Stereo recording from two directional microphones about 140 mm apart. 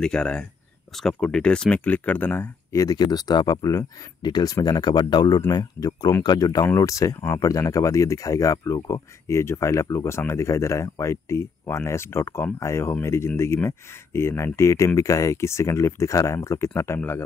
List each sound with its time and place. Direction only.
0.0 s speech: 5° left (ahead or behind)